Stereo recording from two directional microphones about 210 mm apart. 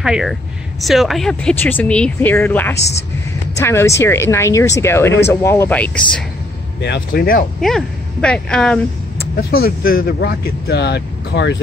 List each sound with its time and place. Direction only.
0.0 s speech: centre (ahead or behind)
6.8 s speech: 50° left (ahead or behind)
7.6 s speech: 5° left (ahead or behind)
9.6 s speech: 45° left (ahead or behind)